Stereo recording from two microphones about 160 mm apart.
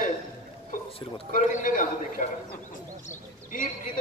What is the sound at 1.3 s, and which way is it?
Speech, 55° left (ahead or behind).